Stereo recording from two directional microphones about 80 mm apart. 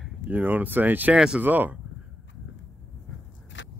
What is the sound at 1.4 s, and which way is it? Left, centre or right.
Speech, right.